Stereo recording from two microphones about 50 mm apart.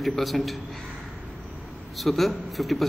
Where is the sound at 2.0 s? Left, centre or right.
Centre.